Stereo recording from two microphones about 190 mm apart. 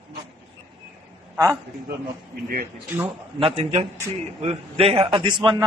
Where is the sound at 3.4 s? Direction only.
30° right (ahead or behind).